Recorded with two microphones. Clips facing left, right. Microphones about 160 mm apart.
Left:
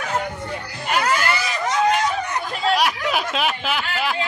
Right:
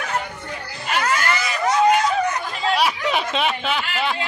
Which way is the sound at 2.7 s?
Centre (ahead or behind).